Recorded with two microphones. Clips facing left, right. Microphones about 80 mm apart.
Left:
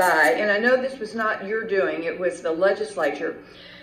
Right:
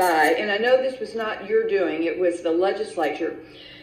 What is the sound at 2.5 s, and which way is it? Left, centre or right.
Speech, left.